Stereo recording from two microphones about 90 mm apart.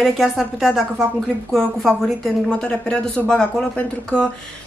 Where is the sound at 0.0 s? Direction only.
Centre (ahead or behind).